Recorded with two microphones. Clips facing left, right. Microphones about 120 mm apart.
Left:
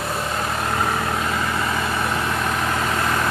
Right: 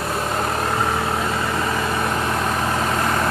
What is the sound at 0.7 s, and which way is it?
Vehicle, 5° right (ahead or behind).